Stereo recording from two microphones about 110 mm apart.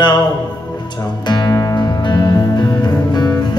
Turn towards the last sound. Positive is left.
turn(degrees=35)  # may be behind; listen again after turning